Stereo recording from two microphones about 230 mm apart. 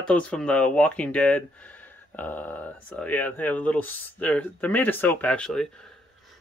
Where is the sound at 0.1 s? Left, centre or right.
Centre.